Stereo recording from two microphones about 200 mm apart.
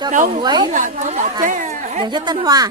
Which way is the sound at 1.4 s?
40° right (ahead or behind).